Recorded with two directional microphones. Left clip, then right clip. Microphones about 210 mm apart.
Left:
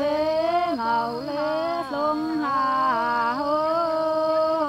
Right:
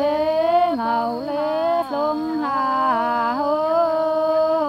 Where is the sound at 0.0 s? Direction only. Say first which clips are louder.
Right 3 dB; 50° right (ahead or behind).